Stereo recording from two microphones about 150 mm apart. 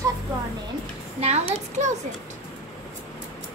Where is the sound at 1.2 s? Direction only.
45° right (ahead or behind).